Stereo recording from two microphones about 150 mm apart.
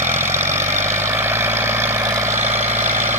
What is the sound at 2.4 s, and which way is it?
Vehicle, 50° right (ahead or behind).